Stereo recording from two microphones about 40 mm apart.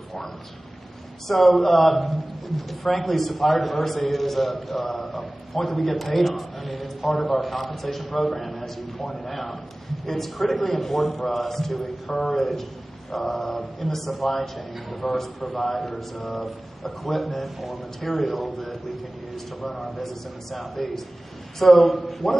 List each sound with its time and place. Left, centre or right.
1.2 s a man's voice: centre